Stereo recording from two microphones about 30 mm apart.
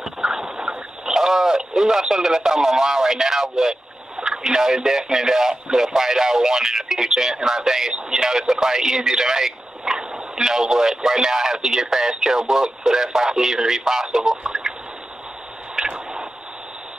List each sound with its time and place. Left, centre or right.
0.0 s a sound: centre
1.0 s speech: centre
15.8 s tick-tock: centre